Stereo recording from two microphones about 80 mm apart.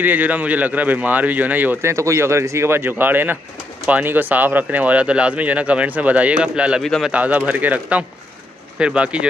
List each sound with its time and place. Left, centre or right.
0.0 s speech: right
1.9 s speech: right; by 6.8 s centre
6.8 s speech: centre
7.1 s speech: centre